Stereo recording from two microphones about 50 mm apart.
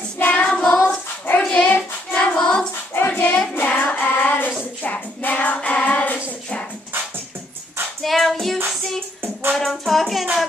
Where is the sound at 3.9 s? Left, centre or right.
Left.